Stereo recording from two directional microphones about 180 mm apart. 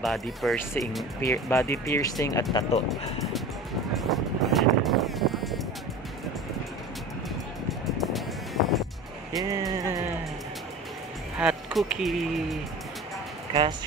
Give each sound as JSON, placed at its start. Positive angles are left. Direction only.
{"t": 0.0, "sound": "speech", "side_deg": 0}
{"t": 1.2, "sound": "speech", "side_deg": 15}
{"t": 3.9, "sound": "music", "side_deg": 0}
{"t": 8.0, "sound": "music", "side_deg": 0}
{"t": 9.4, "sound": "a sound", "side_deg": -20}
{"t": 11.3, "sound": "speech", "side_deg": -5}
{"t": 13.5, "sound": "speech", "side_deg": -25}